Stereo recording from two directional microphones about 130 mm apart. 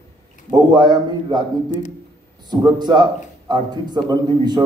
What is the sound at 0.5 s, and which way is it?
A man's voice, 30° right (ahead or behind).